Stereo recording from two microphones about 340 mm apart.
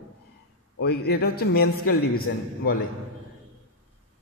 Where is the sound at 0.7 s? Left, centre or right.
Left.